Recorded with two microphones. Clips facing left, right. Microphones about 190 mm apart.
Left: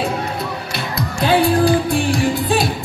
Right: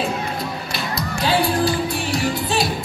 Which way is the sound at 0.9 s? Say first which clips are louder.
Left 4 dB; 55° left (ahead or behind).